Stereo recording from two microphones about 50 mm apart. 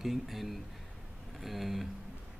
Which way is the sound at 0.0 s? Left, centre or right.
Centre.